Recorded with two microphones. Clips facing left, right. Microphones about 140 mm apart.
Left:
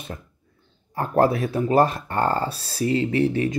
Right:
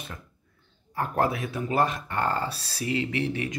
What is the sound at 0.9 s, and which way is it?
Speech, 35° left (ahead or behind).